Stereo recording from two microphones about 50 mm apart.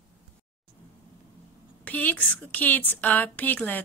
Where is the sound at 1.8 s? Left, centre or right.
Left.